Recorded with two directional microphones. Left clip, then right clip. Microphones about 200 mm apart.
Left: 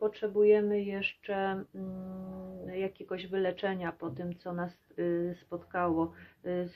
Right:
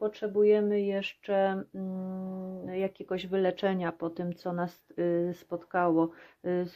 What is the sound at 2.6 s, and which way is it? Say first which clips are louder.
Speech: right 3 dB; 55° right (ahead or behind).